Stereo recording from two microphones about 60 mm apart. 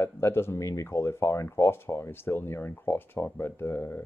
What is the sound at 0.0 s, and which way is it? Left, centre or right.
Speech, left.